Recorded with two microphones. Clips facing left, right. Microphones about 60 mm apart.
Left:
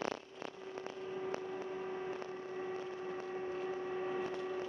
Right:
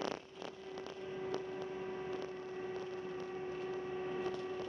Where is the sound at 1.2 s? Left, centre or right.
Centre.